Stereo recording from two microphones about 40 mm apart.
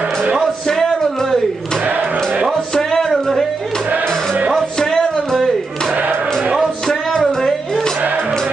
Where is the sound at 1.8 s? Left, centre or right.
Right.